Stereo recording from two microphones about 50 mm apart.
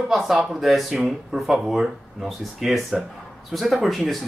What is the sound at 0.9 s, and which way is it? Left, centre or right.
Speech, centre.